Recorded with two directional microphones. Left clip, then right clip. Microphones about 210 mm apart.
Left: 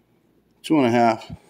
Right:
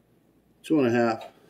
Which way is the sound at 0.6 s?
40° left (ahead or behind).